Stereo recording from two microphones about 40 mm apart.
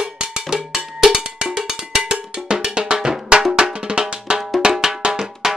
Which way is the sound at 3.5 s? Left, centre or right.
Centre.